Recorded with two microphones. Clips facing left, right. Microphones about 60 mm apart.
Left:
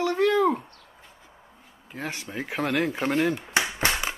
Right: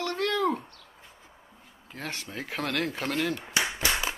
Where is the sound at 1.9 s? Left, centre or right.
Centre.